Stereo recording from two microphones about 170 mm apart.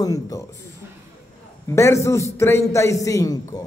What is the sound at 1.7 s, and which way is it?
A man's voice, 15° left (ahead or behind).